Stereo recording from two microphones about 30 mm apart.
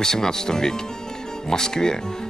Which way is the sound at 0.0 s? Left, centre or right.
Centre.